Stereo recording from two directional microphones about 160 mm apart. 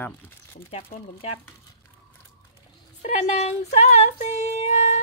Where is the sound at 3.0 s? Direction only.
45° left (ahead or behind).